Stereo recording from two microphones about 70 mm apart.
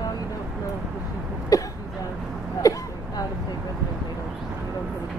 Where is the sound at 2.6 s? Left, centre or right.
Left.